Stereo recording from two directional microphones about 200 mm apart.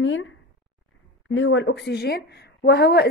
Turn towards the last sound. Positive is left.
turn(degrees=55)  # may be behind; listen again after turning